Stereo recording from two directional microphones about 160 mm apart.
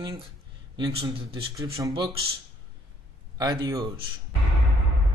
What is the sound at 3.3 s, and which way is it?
Speech, 20° right (ahead or behind).